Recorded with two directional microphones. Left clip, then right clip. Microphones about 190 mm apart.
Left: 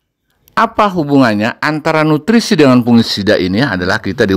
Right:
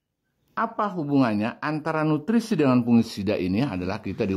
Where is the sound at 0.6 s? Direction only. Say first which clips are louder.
Left 15 dB; 25° left (ahead or behind).